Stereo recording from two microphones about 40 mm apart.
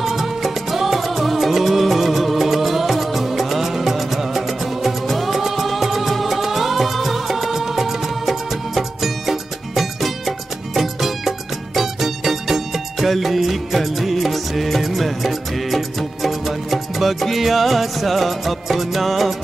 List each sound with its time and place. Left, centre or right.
0.0 s music: centre